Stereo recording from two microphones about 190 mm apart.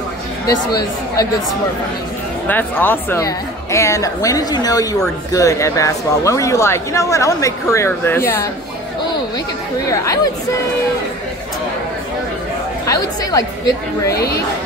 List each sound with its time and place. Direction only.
0.5 s speech: 20° left (ahead or behind)
2.4 s speech: 10° left (ahead or behind)
9.8 s speech: 20° left (ahead or behind)
12.8 s speech: 20° left (ahead or behind)
14.1 s speech: 55° left (ahead or behind)